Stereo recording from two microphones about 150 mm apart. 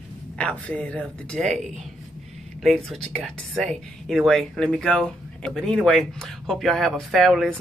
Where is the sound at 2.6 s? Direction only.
Centre (ahead or behind).